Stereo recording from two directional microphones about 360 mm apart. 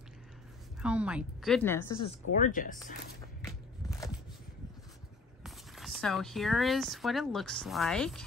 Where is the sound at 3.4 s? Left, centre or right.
Centre.